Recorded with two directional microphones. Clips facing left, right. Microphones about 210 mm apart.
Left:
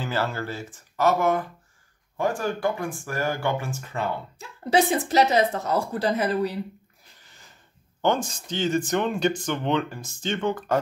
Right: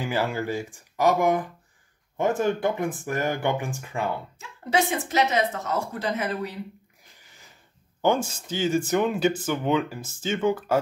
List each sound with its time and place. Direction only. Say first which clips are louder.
0.0 s speech: right 1 dB; 15° right (ahead or behind)
4.4 s a woman's voice: left 4 dB; 35° left (ahead or behind)
8.0 s speech: right 1 dB; 10° right (ahead or behind)